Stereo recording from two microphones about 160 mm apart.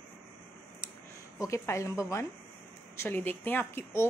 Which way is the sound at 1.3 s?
20° left (ahead or behind).